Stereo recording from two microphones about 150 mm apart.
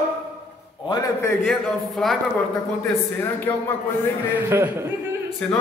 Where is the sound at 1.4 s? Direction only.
Centre (ahead or behind).